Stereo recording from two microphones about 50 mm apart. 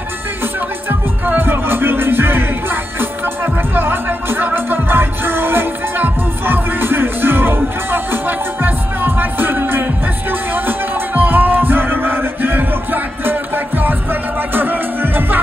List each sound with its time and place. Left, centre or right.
0.8 s music: right
11.1 s music: right
14.5 s music: right